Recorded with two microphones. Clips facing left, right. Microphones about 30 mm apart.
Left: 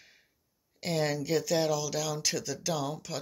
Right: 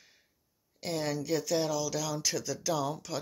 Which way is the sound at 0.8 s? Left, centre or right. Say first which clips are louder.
Left 3 dB; left.